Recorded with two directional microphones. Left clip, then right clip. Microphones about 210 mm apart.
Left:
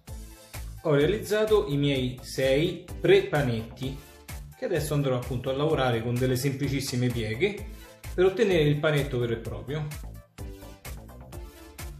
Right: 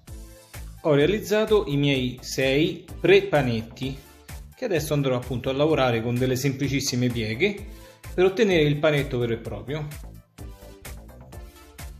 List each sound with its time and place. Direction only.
0.8 s speech: 35° right (ahead or behind)